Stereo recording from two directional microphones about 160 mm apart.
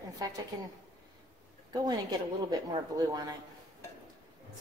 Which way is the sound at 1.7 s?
25° right (ahead or behind).